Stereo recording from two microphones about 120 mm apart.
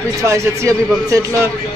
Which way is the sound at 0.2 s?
25° right (ahead or behind).